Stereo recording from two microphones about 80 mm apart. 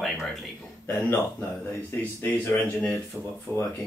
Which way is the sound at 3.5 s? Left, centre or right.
Centre.